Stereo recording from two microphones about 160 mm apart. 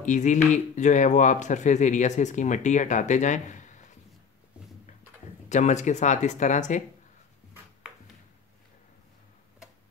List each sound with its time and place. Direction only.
0.0 s speech: 50° left (ahead or behind)
5.5 s speech: 50° left (ahead or behind)